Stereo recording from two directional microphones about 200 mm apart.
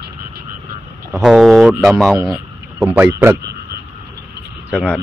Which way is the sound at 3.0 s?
10° right (ahead or behind).